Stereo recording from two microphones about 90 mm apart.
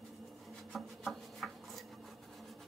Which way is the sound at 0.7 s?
Centre (ahead or behind).